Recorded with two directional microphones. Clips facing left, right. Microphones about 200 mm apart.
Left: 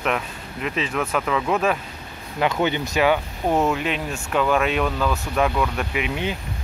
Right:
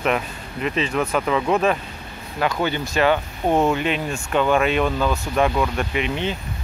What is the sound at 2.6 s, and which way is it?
Speech, 20° left (ahead or behind).